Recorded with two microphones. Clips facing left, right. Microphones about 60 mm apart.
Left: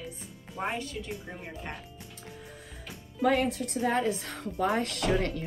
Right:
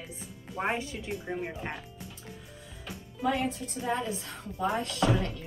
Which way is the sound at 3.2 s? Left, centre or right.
Left.